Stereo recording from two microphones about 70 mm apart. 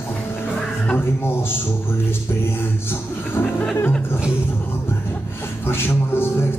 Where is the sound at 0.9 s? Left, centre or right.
Left.